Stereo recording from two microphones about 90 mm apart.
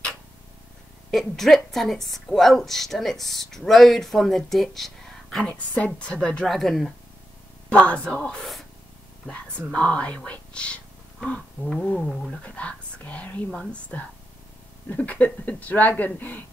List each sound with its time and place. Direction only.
1.1 s a woman's voice: 5° left (ahead or behind)
6.2 s a woman's voice: 15° left (ahead or behind)
9.7 s a woman's voice: 15° left (ahead or behind)
12.4 s speech: 15° left (ahead or behind)